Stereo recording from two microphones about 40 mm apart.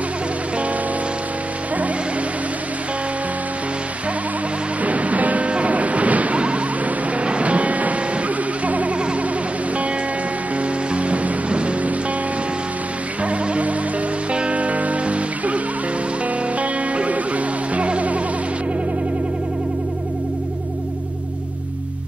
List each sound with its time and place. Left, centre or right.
4.8 s music: right
10.9 s music: right
13.2 s music: right